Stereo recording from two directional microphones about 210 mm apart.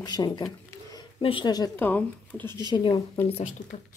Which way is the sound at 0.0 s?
20° left (ahead or behind).